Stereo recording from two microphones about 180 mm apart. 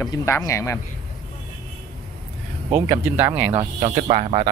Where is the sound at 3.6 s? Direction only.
30° right (ahead or behind).